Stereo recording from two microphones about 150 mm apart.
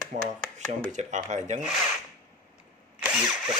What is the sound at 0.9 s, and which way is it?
Speech, 55° right (ahead or behind).